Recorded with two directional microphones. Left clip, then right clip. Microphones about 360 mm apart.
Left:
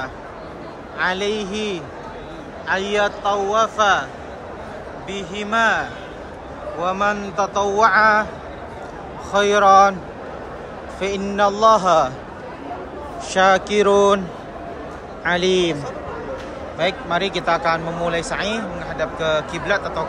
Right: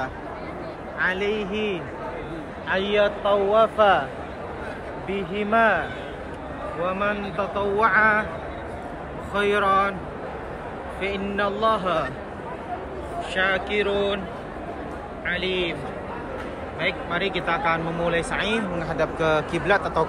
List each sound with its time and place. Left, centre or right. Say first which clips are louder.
1.0 s speech: left 3 dB; centre
5.1 s speech: left 1 dB; centre
9.3 s speech: left 8 dB; centre
11.0 s speech: left 7 dB; centre
13.3 s a man's voice: left 8 dB; centre
16.8 s speech: left 5 dB; centre